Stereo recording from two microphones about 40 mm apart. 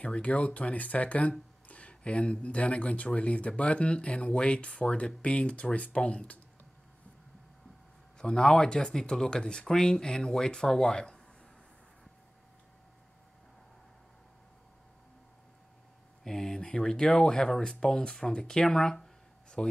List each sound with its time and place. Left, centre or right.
0.0 s speech: left
8.2 s speech: centre
16.3 s speech: centre